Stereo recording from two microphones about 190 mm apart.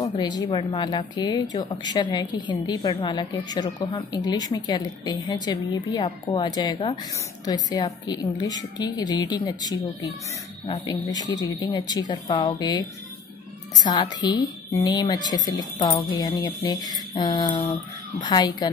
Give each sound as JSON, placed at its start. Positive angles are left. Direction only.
{"t": 0.0, "sound": "a woman's voice", "side_deg": 25}
{"t": 13.8, "sound": "a woman's voice", "side_deg": 20}